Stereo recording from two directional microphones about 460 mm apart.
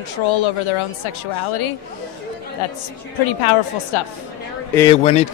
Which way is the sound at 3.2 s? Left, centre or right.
Left.